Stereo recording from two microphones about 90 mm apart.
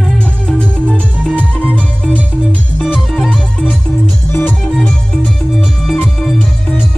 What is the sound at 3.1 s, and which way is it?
Music, centre (ahead or behind).